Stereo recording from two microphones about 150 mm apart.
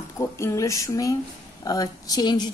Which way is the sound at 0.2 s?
20° left (ahead or behind).